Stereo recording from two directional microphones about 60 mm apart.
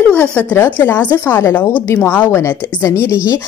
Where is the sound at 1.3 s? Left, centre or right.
Left.